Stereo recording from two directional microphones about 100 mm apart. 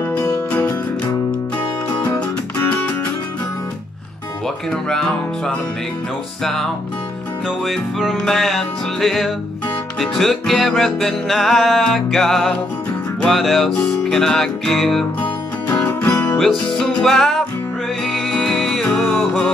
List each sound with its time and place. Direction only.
0.1 s music: 20° left (ahead or behind)
2.0 s music: 15° left (ahead or behind)
6.4 s music: 5° left (ahead or behind)
16.3 s music: 5° left (ahead or behind)